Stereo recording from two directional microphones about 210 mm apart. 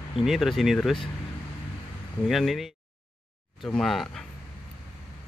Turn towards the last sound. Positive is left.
turn(degrees=0)  # may be behind; listen again after turning